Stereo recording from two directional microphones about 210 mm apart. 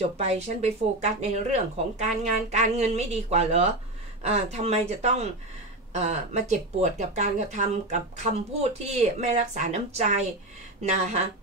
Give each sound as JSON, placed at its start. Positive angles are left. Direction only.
{"t": 0.2, "sound": "speech", "side_deg": -30}